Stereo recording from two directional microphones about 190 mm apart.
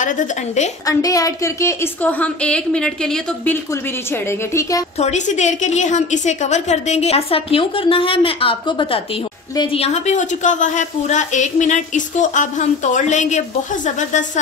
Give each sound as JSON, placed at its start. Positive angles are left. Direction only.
{"t": 0.0, "sound": "a woman's voice", "side_deg": 40}
{"t": 0.8, "sound": "a woman's voice", "side_deg": 20}
{"t": 4.9, "sound": "a woman's voice", "side_deg": 35}